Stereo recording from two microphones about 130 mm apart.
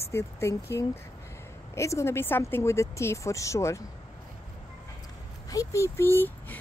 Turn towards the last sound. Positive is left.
turn(degrees=15)  # may be behind; listen again after turning